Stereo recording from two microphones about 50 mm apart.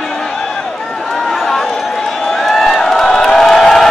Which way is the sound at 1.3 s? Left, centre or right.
Centre.